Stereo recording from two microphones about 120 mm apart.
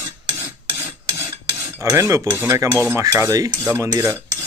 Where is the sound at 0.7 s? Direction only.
15° right (ahead or behind).